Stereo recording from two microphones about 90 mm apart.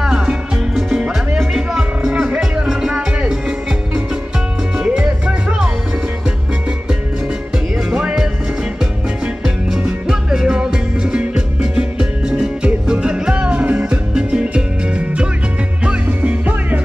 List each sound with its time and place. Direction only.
0.0 s music: 5° right (ahead or behind)
7.9 s music: 10° right (ahead or behind)